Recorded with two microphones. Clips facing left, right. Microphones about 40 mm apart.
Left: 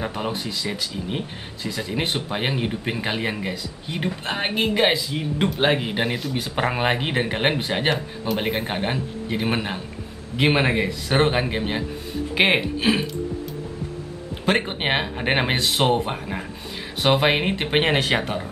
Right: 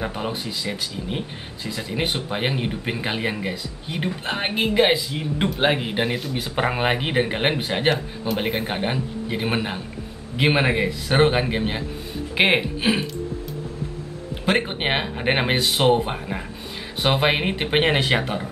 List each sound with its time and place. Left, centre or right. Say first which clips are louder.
0.0 s speech: even; centre
14.4 s speech: even; centre